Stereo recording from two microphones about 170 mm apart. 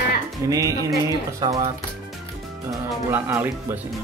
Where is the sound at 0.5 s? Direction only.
20° right (ahead or behind).